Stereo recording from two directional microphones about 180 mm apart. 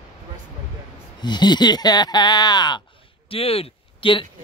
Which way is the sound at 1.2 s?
25° left (ahead or behind).